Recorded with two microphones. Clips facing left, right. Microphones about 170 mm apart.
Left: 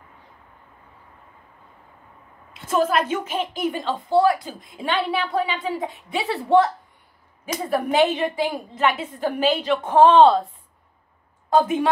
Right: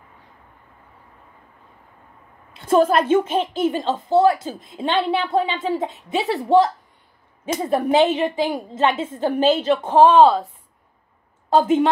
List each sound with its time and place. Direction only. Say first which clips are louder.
2.6 s a woman's voice: right 5 dB; 30° right (ahead or behind)
9.8 s speech: even; 10° right (ahead or behind)
11.5 s a woman's voice: right 3 dB; 25° right (ahead or behind)